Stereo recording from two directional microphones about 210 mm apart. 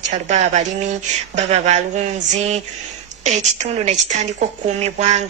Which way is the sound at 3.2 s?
35° right (ahead or behind).